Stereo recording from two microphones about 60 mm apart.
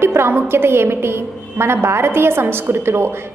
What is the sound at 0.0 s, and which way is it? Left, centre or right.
A woman's voice, right.